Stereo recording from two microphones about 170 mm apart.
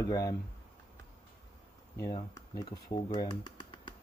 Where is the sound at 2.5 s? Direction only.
25° left (ahead or behind).